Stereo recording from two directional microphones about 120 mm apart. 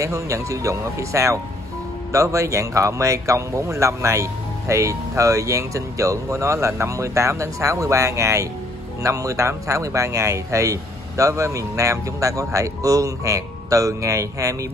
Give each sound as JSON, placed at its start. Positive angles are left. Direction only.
{"t": 0.0, "sound": "speech", "side_deg": -25}